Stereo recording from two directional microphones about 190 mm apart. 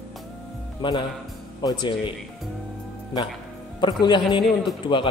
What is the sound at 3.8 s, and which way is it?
A man's voice, 25° left (ahead or behind).